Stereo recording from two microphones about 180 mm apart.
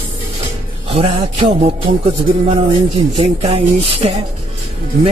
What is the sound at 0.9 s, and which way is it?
Speech, 30° right (ahead or behind).